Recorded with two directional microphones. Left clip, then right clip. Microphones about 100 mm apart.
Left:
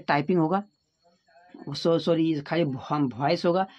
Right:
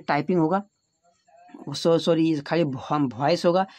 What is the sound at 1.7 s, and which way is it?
Speech, 35° right (ahead or behind).